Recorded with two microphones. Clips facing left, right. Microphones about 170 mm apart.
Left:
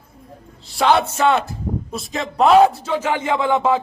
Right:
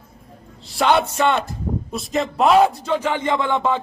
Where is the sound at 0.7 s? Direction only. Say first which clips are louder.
Left 1 dB; centre (ahead or behind).